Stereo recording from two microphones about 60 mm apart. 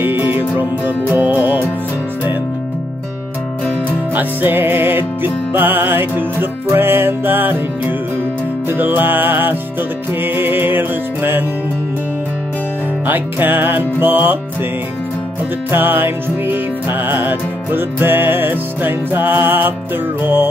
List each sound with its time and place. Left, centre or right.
0.0 s music: right
4.1 s music: right
8.6 s music: right
13.0 s music: right
15.7 s music: right